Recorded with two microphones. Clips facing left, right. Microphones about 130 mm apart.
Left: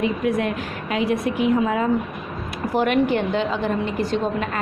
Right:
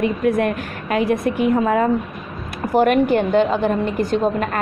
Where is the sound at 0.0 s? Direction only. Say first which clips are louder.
Right 3 dB; 50° right (ahead or behind).